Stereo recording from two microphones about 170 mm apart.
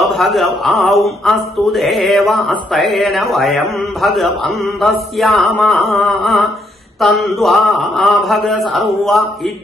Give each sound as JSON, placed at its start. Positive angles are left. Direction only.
{"t": 0.0, "sound": "a man's voice", "side_deg": 0}